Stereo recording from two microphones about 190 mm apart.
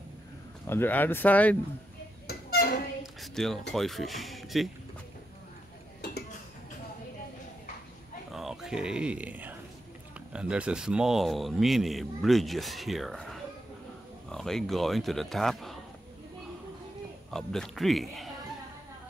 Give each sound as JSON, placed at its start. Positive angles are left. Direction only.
{"t": 0.7, "sound": "speech", "side_deg": 10}
{"t": 2.2, "sound": "a sound", "side_deg": 55}
{"t": 3.0, "sound": "a sound", "side_deg": 0}
{"t": 3.7, "sound": "a man's voice", "side_deg": 0}
{"t": 8.3, "sound": "a man's voice", "side_deg": 0}
{"t": 17.3, "sound": "a man's voice", "side_deg": 5}